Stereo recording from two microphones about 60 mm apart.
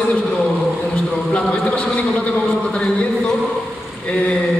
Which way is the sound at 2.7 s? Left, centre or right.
Centre.